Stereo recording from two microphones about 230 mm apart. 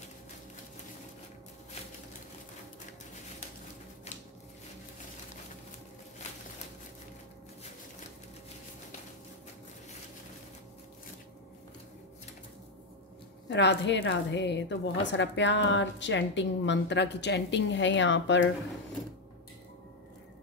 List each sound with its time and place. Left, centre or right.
13.5 s a woman's voice: left